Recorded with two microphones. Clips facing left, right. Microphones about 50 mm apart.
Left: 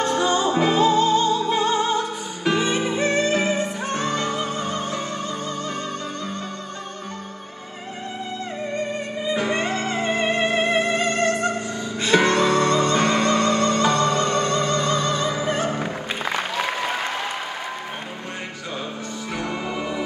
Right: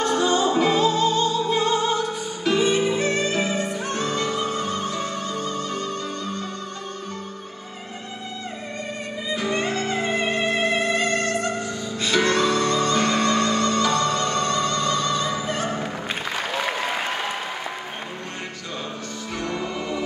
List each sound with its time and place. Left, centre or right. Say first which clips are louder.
0.2 s music: even; left
9.3 s music: left 1 dB; left
19.3 s music: even; centre